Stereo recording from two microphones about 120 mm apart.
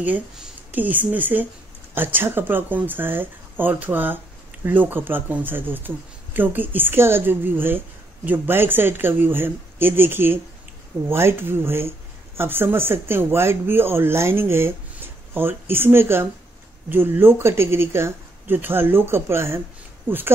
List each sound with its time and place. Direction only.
0.0 s speech: 15° right (ahead or behind)